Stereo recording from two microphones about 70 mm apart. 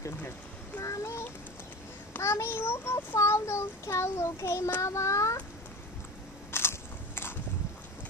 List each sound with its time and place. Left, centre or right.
0.7 s a sound: left
2.1 s child singing: left
4.8 s a child's voice: left
6.5 s biting: left